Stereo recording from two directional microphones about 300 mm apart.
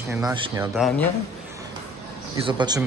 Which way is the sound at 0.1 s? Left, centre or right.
Centre.